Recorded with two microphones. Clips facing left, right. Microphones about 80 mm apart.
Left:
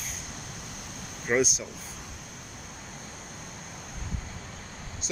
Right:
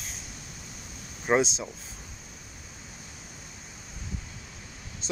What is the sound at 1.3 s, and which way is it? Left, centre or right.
Speech, right.